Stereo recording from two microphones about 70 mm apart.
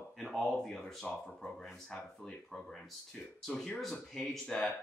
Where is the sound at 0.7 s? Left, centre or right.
Centre.